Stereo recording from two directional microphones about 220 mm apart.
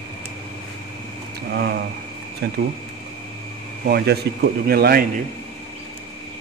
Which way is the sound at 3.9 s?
45° right (ahead or behind).